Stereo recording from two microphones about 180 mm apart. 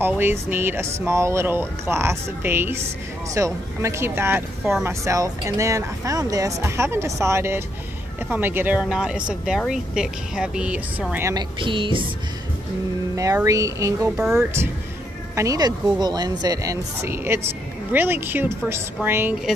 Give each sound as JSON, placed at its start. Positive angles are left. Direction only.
{"t": 0.0, "sound": "speech", "side_deg": -10}
{"t": 11.6, "sound": "speech", "side_deg": -30}
{"t": 13.1, "sound": "speech", "side_deg": -20}
{"t": 14.1, "sound": "speech", "side_deg": -5}
{"t": 15.3, "sound": "a woman's voice", "side_deg": -20}